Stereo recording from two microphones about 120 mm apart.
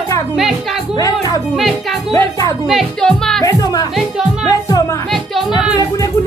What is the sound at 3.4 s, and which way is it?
Speech, 30° left (ahead or behind).